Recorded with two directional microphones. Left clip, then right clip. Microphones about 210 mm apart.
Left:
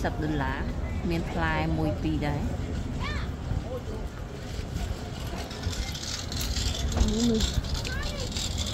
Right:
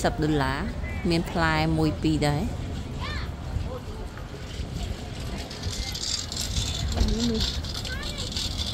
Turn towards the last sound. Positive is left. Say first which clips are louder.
# even
turn(degrees=55)  # may be behind; listen again after turning